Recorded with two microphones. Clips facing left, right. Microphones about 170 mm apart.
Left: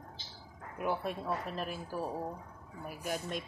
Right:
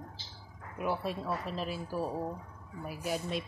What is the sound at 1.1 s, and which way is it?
Music, 50° left (ahead or behind).